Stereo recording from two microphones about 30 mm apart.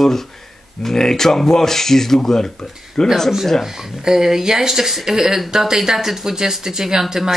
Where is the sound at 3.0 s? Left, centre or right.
Left.